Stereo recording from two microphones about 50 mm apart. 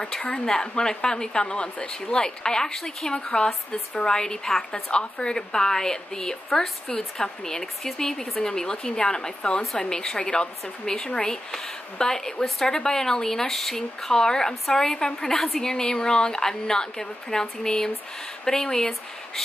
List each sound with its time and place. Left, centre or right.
0.5 s speech: centre